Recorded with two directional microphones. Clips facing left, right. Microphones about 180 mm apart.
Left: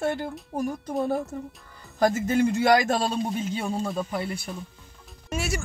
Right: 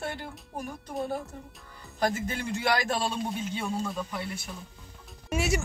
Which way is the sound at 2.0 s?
45° left (ahead or behind).